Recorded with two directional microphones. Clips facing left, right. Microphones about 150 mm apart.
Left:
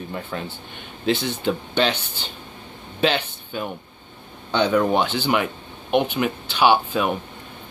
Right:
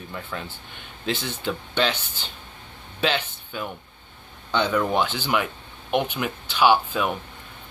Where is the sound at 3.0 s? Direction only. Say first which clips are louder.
Left 3 dB; 50° left (ahead or behind).